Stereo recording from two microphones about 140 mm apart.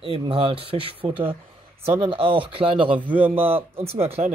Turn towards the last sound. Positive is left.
turn(degrees=-45)  # may be behind; listen again after turning